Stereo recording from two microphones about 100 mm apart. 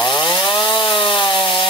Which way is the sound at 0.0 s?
45° left (ahead or behind).